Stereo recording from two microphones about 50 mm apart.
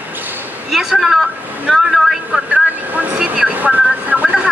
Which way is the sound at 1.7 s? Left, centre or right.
Centre.